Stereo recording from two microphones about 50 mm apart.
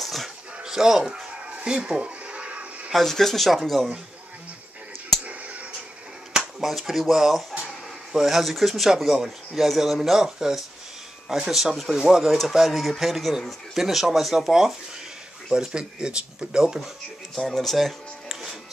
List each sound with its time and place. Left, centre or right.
0.0 s bow-wow: centre
0.7 s a sound: centre; by 2.9 s right
2.9 s speech: centre
5.2 s a sound: right
6.3 s speech: centre
9.1 s speech: centre
17.4 s speech: centre